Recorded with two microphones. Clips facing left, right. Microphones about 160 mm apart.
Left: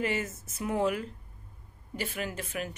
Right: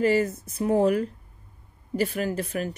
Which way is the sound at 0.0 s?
35° right (ahead or behind).